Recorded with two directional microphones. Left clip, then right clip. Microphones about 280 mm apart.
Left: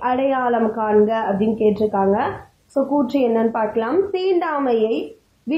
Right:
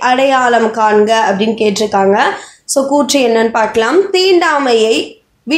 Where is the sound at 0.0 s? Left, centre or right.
Right.